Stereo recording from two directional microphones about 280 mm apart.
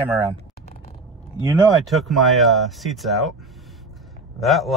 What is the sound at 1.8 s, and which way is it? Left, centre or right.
Speech, centre.